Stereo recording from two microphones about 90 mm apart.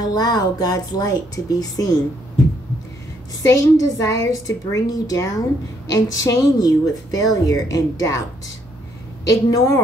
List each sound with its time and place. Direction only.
0.0 s speech: 45° left (ahead or behind)
3.4 s speech: 35° left (ahead or behind)